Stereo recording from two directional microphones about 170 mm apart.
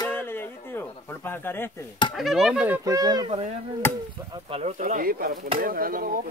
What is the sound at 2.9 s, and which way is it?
Speech, 20° right (ahead or behind).